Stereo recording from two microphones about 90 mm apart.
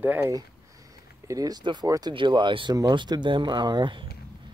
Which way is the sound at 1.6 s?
60° right (ahead or behind).